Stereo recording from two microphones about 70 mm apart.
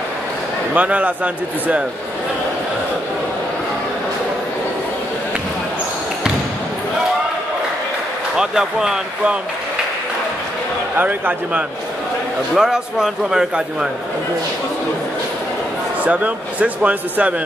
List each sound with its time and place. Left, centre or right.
0.7 s speech: right
8.4 s a man's voice: centre
11.0 s speech: right
12.5 s a man's voice: centre
16.0 s speech: right